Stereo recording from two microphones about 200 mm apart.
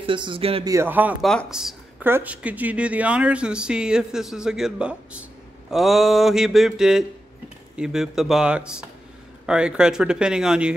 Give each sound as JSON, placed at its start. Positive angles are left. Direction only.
{"t": 0.0, "sound": "a man's voice", "side_deg": -25}
{"t": 0.7, "sound": "speech", "side_deg": -10}
{"t": 1.2, "sound": "speech", "side_deg": 0}